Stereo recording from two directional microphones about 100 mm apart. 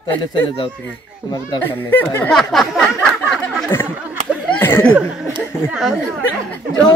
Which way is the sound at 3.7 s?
20° left (ahead or behind).